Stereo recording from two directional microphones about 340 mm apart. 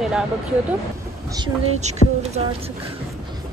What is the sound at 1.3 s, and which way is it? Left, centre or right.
Speech, centre.